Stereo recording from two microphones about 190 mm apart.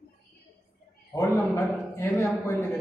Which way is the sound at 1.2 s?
15° left (ahead or behind).